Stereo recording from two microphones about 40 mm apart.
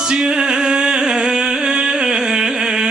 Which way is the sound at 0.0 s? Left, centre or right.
Centre.